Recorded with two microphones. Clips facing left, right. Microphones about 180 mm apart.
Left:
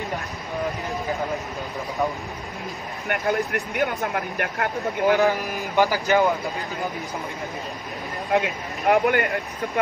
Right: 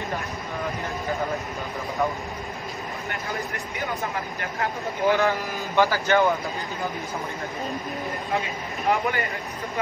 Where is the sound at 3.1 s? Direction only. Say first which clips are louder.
Left 10 dB; 60° left (ahead or behind).